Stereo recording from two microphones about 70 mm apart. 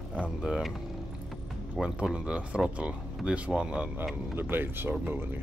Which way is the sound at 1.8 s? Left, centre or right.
Centre.